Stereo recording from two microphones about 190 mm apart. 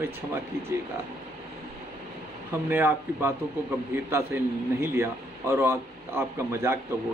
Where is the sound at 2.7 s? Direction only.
10° right (ahead or behind).